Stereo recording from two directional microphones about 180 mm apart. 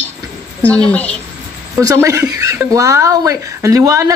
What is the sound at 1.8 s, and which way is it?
Speech, 20° right (ahead or behind).